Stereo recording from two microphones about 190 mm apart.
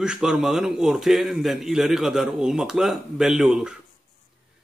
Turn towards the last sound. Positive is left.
turn(degrees=-5)  # may be behind; listen again after turning